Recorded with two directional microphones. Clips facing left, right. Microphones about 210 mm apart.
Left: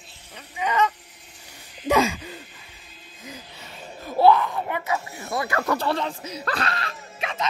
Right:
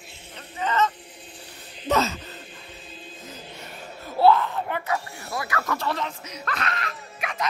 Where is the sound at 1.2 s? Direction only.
30° right (ahead or behind).